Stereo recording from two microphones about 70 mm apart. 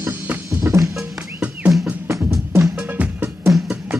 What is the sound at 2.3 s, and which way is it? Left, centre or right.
Music, right.